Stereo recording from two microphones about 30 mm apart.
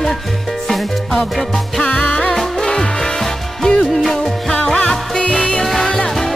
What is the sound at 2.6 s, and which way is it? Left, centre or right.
Music, centre.